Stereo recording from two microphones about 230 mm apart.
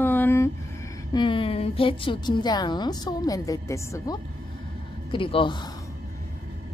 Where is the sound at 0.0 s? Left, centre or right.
Centre.